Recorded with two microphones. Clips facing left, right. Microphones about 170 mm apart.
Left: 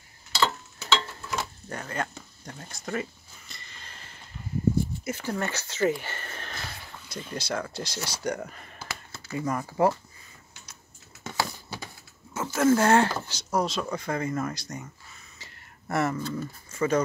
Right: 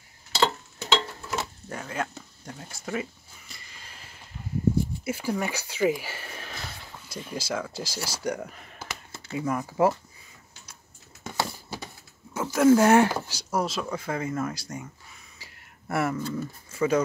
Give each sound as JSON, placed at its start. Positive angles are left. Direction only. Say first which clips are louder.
{"t": 0.3, "sound": "tick-tock", "louder": "right 2 dB", "side_deg": -25}
{"t": 1.7, "sound": "a sound", "louder": "even", "side_deg": -5}
{"t": 5.0, "sound": "speech", "louder": "right 2 dB", "side_deg": -10}
{"t": 11.2, "sound": "a sound", "louder": "even", "side_deg": 0}
{"t": 12.4, "sound": "speech", "louder": "right 3 dB", "side_deg": -10}
{"t": 15.3, "sound": "dog", "louder": "left 1 dB", "side_deg": -10}